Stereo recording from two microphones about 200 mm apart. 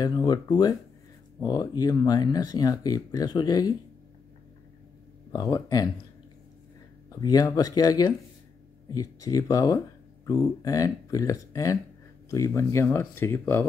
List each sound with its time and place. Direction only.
0.0 s speech: 20° left (ahead or behind)
5.3 s speech: 20° left (ahead or behind)
7.1 s speech: 20° left (ahead or behind)